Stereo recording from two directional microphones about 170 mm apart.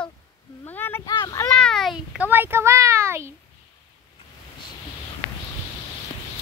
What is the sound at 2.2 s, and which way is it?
Speech, 10° right (ahead or behind).